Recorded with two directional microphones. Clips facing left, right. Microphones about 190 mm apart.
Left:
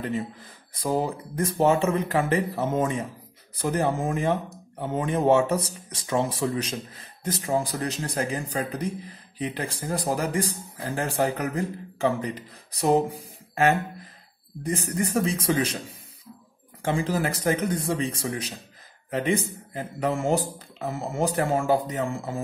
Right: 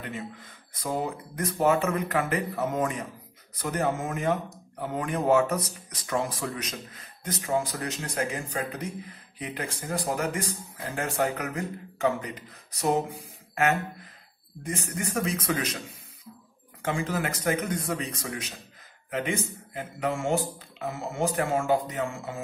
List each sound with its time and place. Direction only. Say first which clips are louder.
0.7 s speech: left 4 dB; 35° left (ahead or behind)
14.6 s speech: left 6 dB; 35° left (ahead or behind)
16.8 s speech: left 3 dB; 35° left (ahead or behind)